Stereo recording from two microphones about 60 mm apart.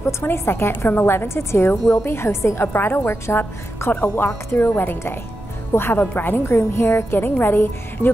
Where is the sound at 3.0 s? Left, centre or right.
Left.